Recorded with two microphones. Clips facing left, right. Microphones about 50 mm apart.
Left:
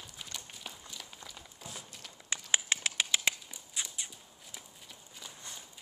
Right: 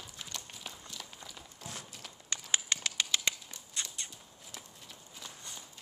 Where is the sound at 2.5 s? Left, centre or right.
Left.